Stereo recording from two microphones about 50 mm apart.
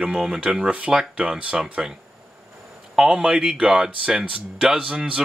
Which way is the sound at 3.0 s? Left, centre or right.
Centre.